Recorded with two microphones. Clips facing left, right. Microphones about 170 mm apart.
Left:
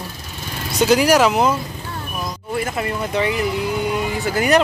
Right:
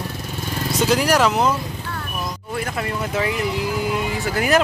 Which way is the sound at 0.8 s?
Centre (ahead or behind).